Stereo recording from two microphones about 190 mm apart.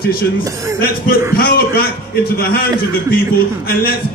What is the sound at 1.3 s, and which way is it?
A man's voice, 50° left (ahead or behind).